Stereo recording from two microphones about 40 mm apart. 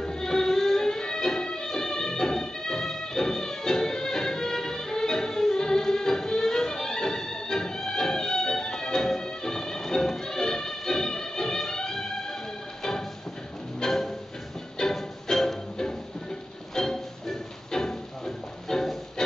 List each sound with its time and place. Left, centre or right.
0.0 s music: centre
13.7 s music: centre